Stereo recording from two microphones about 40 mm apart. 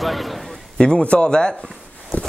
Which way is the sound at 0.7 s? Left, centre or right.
Centre.